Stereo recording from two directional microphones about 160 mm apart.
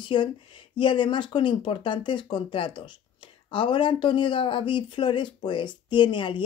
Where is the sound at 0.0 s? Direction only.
30° left (ahead or behind).